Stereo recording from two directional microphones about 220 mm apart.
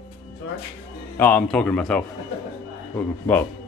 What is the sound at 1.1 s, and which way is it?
Speech, 5° left (ahead or behind).